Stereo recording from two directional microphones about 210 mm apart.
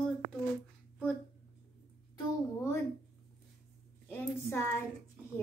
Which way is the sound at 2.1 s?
15° left (ahead or behind).